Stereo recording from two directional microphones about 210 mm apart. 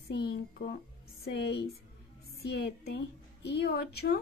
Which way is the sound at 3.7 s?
45° left (ahead or behind).